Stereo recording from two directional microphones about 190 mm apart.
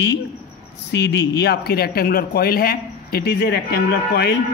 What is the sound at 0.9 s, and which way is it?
Speech, 65° left (ahead or behind).